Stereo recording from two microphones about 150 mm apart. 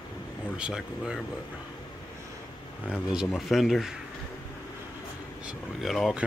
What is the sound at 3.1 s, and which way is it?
Speech, centre (ahead or behind).